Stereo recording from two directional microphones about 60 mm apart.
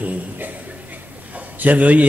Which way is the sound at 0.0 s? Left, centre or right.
Right.